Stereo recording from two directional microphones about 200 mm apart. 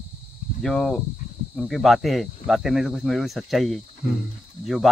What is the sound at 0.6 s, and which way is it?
Speech, centre (ahead or behind).